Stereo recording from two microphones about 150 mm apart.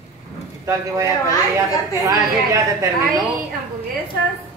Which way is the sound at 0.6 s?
20° right (ahead or behind).